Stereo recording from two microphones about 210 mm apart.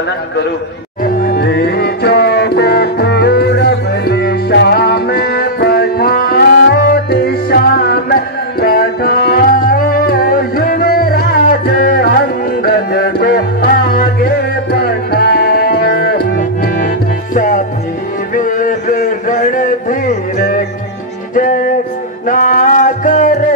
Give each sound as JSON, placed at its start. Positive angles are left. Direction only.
{"t": 1.0, "sound": "music", "side_deg": 45}
{"t": 18.3, "sound": "a sound", "side_deg": 40}
{"t": 22.2, "sound": "music", "side_deg": 40}